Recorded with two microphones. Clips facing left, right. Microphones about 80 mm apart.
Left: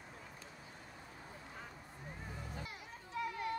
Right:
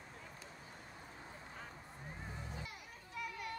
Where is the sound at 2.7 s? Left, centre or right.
Left.